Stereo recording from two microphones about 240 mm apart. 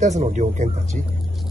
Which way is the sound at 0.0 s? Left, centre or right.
Right.